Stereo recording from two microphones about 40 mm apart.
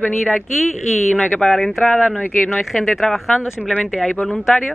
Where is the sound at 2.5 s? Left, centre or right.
Centre.